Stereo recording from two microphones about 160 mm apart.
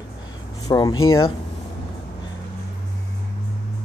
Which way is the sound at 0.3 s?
25° left (ahead or behind).